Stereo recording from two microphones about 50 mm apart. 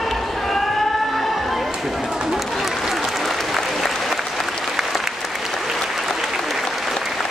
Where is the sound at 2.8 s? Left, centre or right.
Centre.